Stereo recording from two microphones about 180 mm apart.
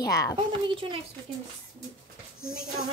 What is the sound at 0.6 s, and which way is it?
Speech, 25° right (ahead or behind).